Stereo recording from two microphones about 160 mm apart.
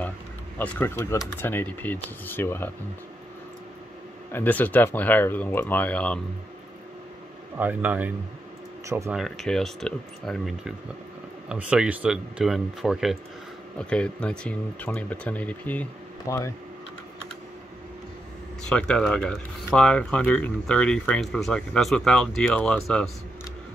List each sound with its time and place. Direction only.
0.6 s speech: 15° left (ahead or behind)
4.3 s speech: 10° left (ahead or behind)
7.5 s speech: 10° right (ahead or behind)
9.1 s speech: centre (ahead or behind); by 16.5 s 15° left (ahead or behind)
18.7 s speech: 5° left (ahead or behind)